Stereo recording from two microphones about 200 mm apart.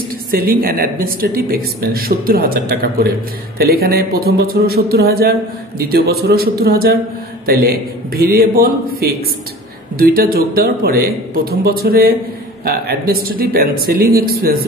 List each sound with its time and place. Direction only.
0.3 s speech: 50° right (ahead or behind)